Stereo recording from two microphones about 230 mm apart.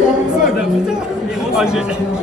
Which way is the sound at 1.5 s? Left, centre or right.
Centre.